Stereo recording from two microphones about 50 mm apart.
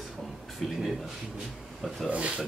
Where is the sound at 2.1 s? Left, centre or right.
Right.